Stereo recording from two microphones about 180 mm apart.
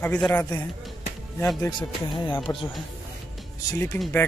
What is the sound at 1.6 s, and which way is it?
Speech, 25° left (ahead or behind).